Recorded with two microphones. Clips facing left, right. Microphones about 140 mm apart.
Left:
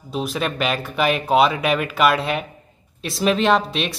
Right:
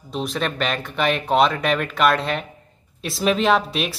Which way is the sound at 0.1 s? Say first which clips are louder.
Left 1 dB; 5° left (ahead or behind).